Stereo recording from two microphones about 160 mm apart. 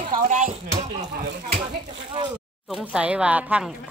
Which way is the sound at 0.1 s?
55° right (ahead or behind).